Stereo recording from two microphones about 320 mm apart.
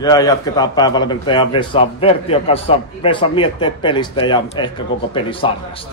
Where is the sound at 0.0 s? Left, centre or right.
Centre.